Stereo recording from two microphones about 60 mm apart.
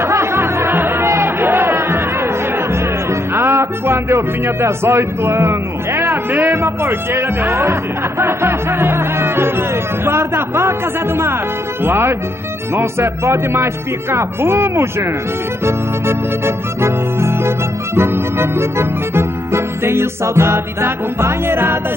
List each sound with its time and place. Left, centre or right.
0.0 s music: right